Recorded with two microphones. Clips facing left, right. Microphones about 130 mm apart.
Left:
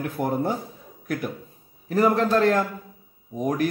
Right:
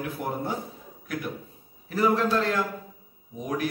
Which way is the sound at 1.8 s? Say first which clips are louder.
Left 3 dB; 45° left (ahead or behind).